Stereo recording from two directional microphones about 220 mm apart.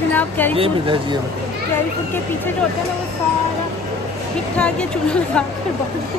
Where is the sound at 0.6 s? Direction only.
20° right (ahead or behind).